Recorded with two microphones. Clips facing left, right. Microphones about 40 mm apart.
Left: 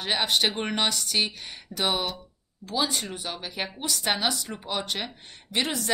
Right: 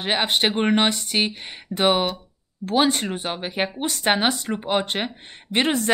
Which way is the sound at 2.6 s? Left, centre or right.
Right.